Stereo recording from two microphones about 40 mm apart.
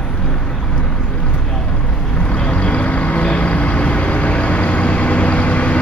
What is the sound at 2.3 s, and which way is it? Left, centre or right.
Vehicle, left.